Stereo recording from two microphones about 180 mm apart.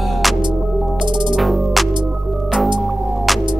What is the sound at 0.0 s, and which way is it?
Music, centre (ahead or behind).